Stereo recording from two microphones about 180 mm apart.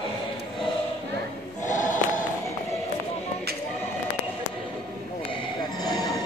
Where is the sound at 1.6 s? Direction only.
45° left (ahead or behind).